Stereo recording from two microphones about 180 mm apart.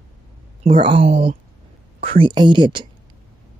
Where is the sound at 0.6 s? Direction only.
30° right (ahead or behind).